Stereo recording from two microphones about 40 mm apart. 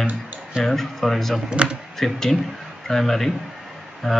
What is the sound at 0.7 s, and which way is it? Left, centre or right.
Speech, centre.